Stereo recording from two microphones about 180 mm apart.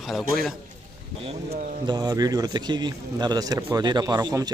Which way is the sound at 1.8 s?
20° right (ahead or behind).